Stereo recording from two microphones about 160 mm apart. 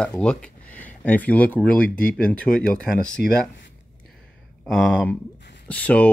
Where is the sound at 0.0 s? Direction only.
5° left (ahead or behind).